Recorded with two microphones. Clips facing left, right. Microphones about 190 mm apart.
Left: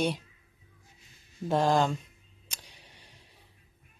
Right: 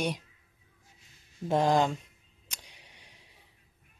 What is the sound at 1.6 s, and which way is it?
Speech, 20° right (ahead or behind).